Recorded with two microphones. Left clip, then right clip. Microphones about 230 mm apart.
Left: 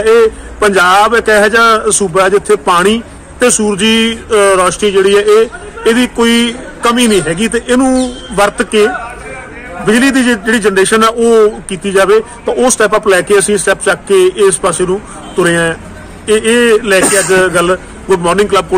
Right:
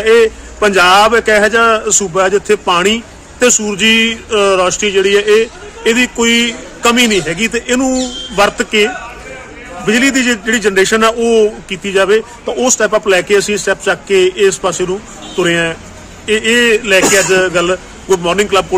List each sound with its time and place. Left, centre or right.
0.0 s a man's voice: centre
17.0 s speech: left
17.3 s a man's voice: centre